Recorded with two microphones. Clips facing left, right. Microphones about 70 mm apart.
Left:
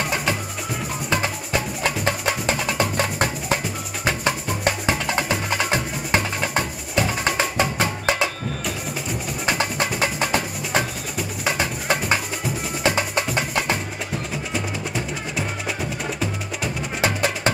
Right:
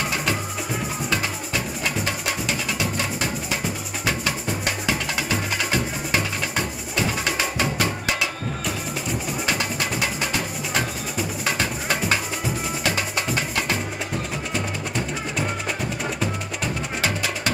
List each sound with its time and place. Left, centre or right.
0.1 s music: centre
1.5 s music: left
4.8 s music: left
9.6 s music: left
10.8 s music: centre
14.5 s music: centre